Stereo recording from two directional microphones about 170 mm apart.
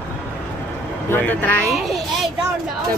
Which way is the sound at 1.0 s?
10° left (ahead or behind).